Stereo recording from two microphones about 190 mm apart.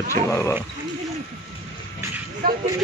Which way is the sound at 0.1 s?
15° left (ahead or behind).